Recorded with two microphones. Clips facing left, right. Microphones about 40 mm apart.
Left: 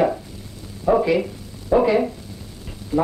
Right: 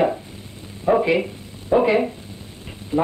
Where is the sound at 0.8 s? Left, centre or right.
Right.